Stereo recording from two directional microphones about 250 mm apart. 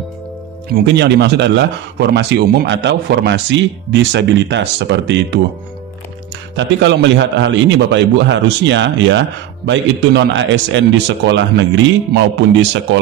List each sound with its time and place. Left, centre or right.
0.7 s speech: right
6.5 s speech: right